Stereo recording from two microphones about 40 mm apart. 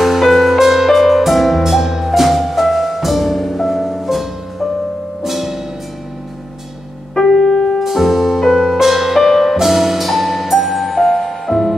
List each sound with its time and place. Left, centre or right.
0.0 s music: centre
7.2 s music: centre
7.8 s music: centre